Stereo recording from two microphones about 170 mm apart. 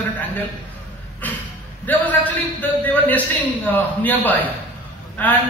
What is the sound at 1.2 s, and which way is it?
A man's voice, 10° left (ahead or behind).